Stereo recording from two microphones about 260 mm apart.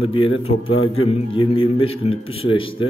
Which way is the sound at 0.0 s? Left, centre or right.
Centre.